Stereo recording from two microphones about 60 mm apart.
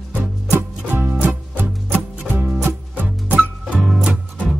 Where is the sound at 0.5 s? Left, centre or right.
Right.